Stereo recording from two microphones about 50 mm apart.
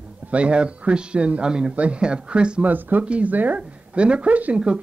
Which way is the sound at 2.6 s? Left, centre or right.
Right.